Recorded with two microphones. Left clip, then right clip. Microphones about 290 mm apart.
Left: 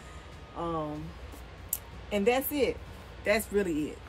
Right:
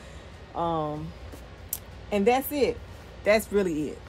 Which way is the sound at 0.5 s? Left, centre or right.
Centre.